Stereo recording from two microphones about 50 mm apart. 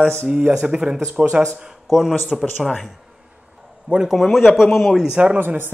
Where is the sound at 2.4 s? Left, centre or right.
Centre.